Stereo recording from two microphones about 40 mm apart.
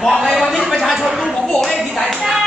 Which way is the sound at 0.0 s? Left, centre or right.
Centre.